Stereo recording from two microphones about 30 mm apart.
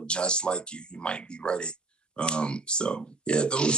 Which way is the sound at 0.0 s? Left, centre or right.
Left.